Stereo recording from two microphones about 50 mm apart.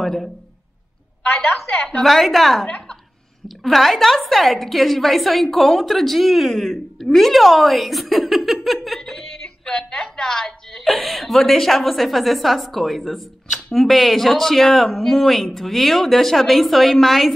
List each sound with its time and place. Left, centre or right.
0.0 s a man's voice: centre
2.0 s a woman's voice: centre
9.7 s a sound: left
9.9 s a woman's voice: centre